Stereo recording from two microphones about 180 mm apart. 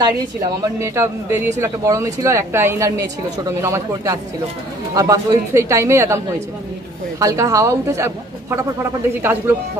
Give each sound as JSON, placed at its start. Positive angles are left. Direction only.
{"t": 0.0, "sound": "a woman's voice", "side_deg": -20}